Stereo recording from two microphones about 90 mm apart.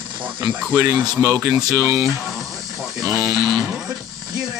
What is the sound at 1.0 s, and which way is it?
Speech, 45° right (ahead or behind).